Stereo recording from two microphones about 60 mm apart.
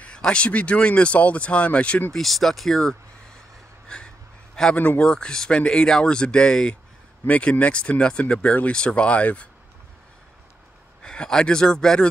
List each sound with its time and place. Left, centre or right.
0.0 s speech: centre
2.1 s speech: centre
4.7 s speech: left
5.0 s speech: centre
7.2 s speech: left
11.0 s a man's voice: centre